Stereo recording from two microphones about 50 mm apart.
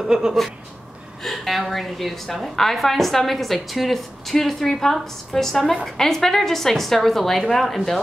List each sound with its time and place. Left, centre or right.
0.0 s speech: centre
1.2 s a woman's voice: centre